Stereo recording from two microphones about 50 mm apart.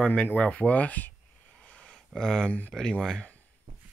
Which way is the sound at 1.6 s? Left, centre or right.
Left.